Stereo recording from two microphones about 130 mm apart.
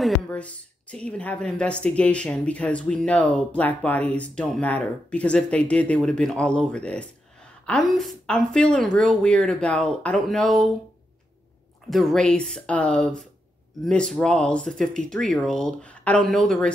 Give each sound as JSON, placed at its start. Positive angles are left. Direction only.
{"t": 0.0, "sound": "a woman's voice", "side_deg": 10}
{"t": 11.9, "sound": "a woman's voice", "side_deg": 5}